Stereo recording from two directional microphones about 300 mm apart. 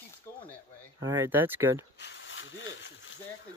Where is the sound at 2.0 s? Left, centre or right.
Left.